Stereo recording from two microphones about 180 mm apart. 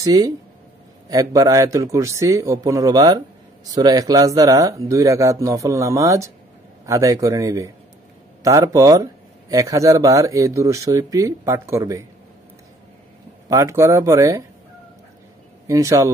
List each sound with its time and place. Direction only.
0.0 s speech: 20° right (ahead or behind)
13.5 s speech: 15° right (ahead or behind)
15.6 s speech: 15° right (ahead or behind)